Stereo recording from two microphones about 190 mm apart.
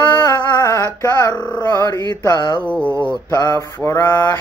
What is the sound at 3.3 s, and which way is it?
Music, 15° left (ahead or behind).